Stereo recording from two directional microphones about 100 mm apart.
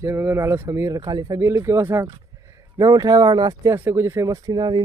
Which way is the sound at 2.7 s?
40° right (ahead or behind).